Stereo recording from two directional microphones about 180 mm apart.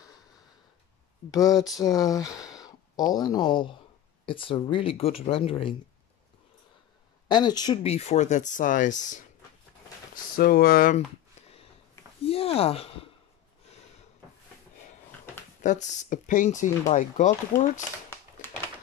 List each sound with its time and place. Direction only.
1.5 s speech: centre (ahead or behind)
1.8 s speech: 20° left (ahead or behind)
2.3 s a sound: 5° right (ahead or behind)
2.6 s speech: 20° left (ahead or behind)
7.2 s speech: 25° left (ahead or behind)
7.8 s speech: 35° left (ahead or behind); by 11.0 s 55° left (ahead or behind)
12.3 s speech: 30° left (ahead or behind)
15.6 s speech: 45° left (ahead or behind)